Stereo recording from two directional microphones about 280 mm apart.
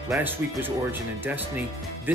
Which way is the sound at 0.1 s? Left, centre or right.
Centre.